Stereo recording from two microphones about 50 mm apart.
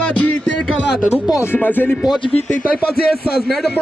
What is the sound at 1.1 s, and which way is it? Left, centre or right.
Speech, left.